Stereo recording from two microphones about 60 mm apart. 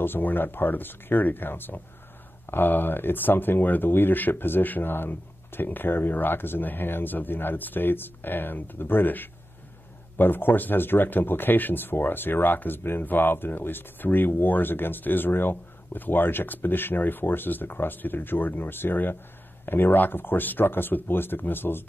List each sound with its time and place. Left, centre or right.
0.0 s speech: left